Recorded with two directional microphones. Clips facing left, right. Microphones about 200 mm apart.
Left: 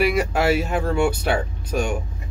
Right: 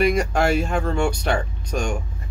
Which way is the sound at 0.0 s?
5° left (ahead or behind).